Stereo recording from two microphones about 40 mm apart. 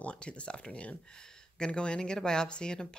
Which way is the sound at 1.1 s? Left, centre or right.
Centre.